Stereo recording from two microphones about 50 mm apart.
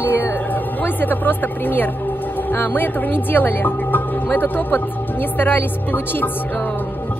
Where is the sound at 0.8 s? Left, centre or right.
Left.